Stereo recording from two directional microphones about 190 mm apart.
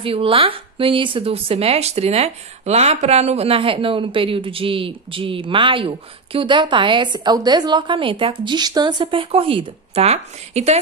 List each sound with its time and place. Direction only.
0.0 s speech: 30° right (ahead or behind)